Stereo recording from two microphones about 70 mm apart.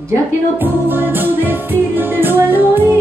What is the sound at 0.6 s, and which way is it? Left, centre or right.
Music, right.